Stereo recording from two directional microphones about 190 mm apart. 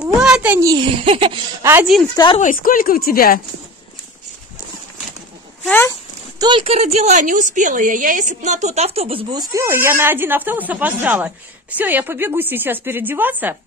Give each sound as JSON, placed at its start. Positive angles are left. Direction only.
{"t": 0.0, "sound": "a sound", "side_deg": -5}
{"t": 0.7, "sound": "a child's voice", "side_deg": -25}
{"t": 1.6, "sound": "a woman's voice", "side_deg": -10}
{"t": 2.3, "sound": "speech", "side_deg": 45}
{"t": 5.7, "sound": "speech", "side_deg": 10}
{"t": 6.3, "sound": "a woman's voice", "side_deg": -25}